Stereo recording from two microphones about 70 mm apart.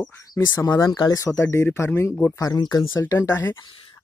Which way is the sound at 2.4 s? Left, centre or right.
Left.